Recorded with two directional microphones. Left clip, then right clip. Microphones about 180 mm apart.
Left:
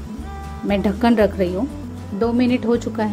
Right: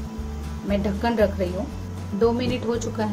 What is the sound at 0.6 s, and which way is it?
Speech, 50° left (ahead or behind).